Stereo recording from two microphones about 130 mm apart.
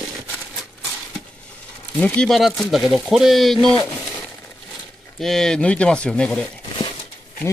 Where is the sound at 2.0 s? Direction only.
10° left (ahead or behind).